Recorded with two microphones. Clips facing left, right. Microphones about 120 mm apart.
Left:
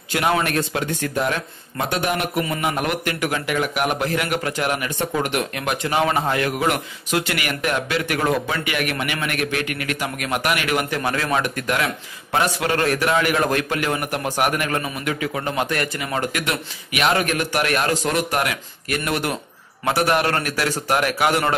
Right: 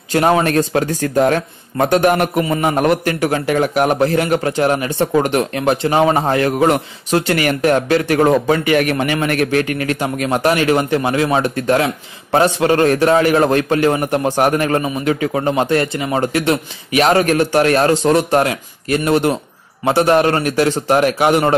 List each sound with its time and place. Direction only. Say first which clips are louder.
0.1 s a man's voice: right 7 dB; 35° right (ahead or behind)